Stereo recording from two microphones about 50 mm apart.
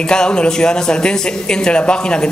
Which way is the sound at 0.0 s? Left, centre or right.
Centre.